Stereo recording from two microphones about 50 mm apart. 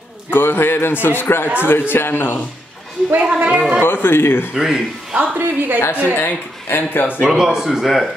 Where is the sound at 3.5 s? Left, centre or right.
Right.